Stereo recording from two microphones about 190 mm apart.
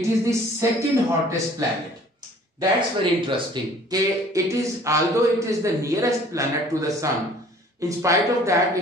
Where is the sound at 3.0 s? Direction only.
25° right (ahead or behind).